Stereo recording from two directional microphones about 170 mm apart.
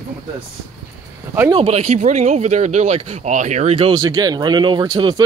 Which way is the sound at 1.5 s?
35° right (ahead or behind).